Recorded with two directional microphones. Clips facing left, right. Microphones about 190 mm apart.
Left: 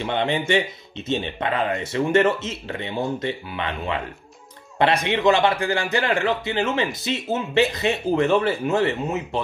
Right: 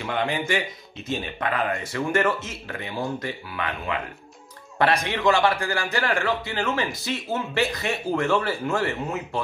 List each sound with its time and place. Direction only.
0.0 s speech: 25° left (ahead or behind)